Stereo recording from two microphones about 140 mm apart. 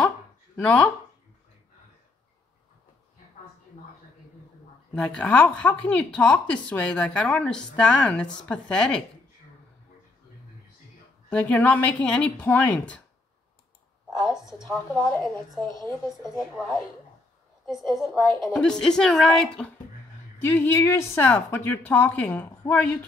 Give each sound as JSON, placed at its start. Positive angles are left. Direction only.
{"t": 0.6, "sound": "speech", "side_deg": 10}
{"t": 4.9, "sound": "speech", "side_deg": 5}
{"t": 11.2, "sound": "speech", "side_deg": 10}
{"t": 14.1, "sound": "a woman's voice", "side_deg": -5}
{"t": 15.8, "sound": "speech", "side_deg": -30}
{"t": 16.3, "sound": "a woman's voice", "side_deg": 0}
{"t": 20.3, "sound": "speech", "side_deg": 15}